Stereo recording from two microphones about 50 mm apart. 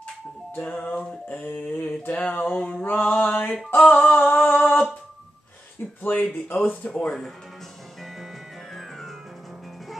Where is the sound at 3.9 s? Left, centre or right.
Left.